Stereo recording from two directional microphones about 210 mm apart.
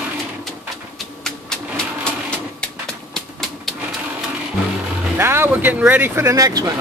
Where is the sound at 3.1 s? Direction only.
Centre (ahead or behind).